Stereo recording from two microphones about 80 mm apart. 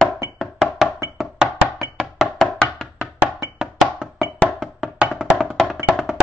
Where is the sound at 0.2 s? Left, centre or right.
Right.